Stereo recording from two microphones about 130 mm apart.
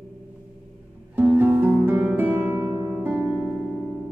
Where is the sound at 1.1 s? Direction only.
15° right (ahead or behind).